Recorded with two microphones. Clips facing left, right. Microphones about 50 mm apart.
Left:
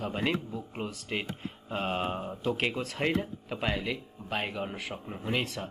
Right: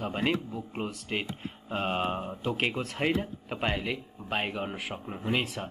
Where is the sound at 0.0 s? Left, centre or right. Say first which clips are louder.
Right 1 dB; centre.